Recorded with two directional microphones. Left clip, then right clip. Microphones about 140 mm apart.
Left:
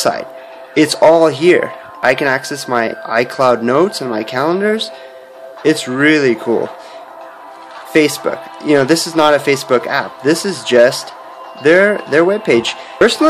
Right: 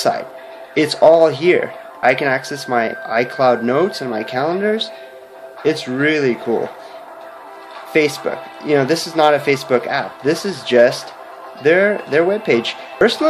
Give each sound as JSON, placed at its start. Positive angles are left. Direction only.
{"t": 0.0, "sound": "a sound", "side_deg": 40}
{"t": 0.7, "sound": "speech", "side_deg": 40}
{"t": 7.9, "sound": "speech", "side_deg": 40}